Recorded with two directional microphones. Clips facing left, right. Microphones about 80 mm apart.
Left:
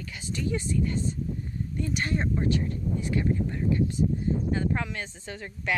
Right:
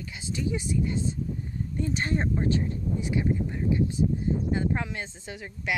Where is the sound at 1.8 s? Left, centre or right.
Right.